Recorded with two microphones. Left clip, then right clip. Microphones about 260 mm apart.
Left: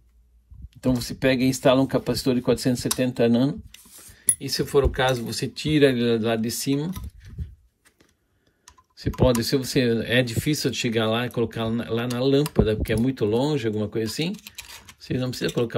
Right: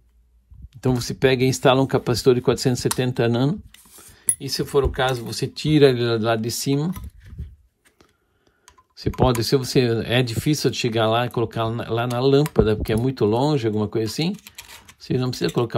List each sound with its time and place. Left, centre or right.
1.0 s speech: right
4.4 s speech: centre
8.9 s speech: centre
14.4 s typing: centre
15.0 s speech: centre